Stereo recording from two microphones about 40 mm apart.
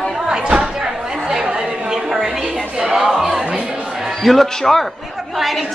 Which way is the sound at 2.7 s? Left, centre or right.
Centre.